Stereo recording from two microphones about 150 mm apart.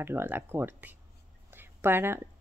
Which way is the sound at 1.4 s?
15° right (ahead or behind).